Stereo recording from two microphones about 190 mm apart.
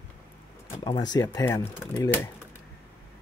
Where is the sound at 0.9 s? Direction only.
20° left (ahead or behind).